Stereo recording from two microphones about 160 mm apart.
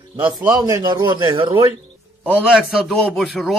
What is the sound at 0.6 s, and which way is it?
Speech, 25° right (ahead or behind).